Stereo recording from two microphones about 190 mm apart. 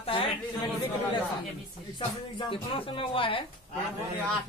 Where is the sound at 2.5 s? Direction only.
25° left (ahead or behind).